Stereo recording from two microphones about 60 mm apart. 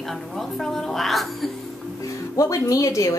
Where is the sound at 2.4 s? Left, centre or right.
Left.